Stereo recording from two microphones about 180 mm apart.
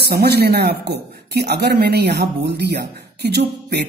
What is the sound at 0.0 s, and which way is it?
Speech, 60° right (ahead or behind).